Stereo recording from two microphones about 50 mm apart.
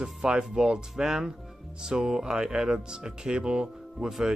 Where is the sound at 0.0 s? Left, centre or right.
Centre.